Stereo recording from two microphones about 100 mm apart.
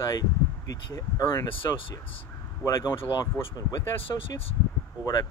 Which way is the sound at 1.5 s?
60° left (ahead or behind).